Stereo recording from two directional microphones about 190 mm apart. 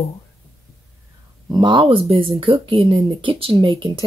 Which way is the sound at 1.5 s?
25° right (ahead or behind).